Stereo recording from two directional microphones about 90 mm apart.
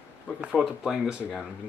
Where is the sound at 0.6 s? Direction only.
5° right (ahead or behind).